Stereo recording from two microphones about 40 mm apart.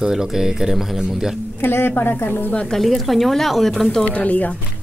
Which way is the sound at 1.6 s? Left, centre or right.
Left.